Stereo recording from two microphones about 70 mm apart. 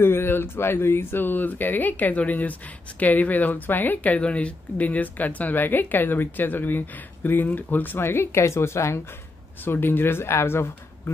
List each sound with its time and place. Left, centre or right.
0.0 s speech: left
9.7 s speech: left